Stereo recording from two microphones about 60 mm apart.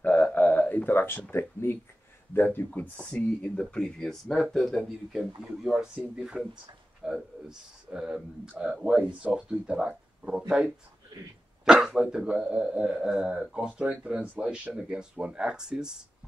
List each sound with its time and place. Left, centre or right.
0.0 s a sound: left
1.3 s speech: left
3.2 s a man's voice: centre
6.4 s speech: centre
7.0 s a man's voice: centre
11.6 s a man's voice: centre